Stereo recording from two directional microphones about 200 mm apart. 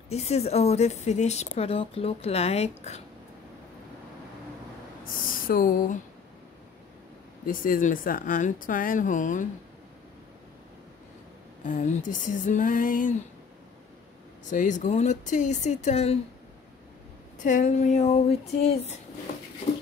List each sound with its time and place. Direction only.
0.1 s speech: 30° left (ahead or behind)
5.1 s speech: 45° left (ahead or behind)
7.4 s speech: 45° left (ahead or behind)
11.6 s speech: 40° left (ahead or behind)
14.5 s speech: 40° left (ahead or behind)
17.4 s speech: 40° left (ahead or behind)